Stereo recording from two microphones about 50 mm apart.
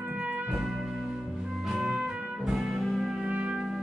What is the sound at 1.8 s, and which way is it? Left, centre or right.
Music, right.